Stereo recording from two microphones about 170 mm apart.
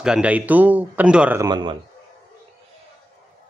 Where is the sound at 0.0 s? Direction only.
5° right (ahead or behind).